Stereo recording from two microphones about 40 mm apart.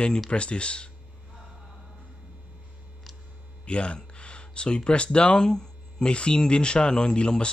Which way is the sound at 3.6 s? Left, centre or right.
Left.